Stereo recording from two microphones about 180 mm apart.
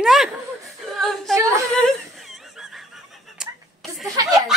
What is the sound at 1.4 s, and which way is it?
Speech, 15° right (ahead or behind).